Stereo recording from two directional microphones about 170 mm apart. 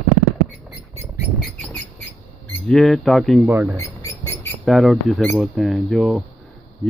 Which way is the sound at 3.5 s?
15° right (ahead or behind).